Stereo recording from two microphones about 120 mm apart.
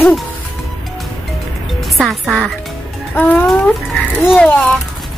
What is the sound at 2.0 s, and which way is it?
Speech, centre (ahead or behind).